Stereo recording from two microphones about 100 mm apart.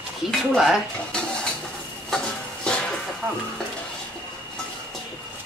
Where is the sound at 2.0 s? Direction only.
5° left (ahead or behind).